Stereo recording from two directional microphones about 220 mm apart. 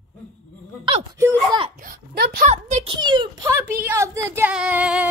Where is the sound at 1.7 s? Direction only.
40° right (ahead or behind).